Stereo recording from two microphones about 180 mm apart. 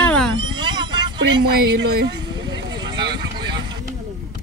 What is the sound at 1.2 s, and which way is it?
Speech, 75° right (ahead or behind).